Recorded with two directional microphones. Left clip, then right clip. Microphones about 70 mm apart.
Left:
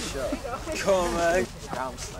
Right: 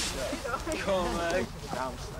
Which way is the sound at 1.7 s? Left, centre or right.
Centre.